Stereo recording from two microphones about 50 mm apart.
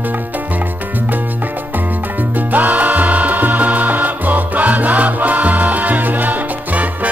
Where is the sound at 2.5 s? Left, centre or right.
Right.